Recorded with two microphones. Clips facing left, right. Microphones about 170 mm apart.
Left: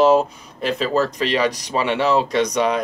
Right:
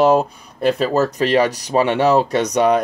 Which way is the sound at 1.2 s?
45° right (ahead or behind).